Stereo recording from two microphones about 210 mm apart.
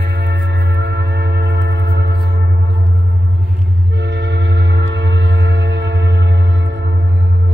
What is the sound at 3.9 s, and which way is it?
Music, 55° right (ahead or behind).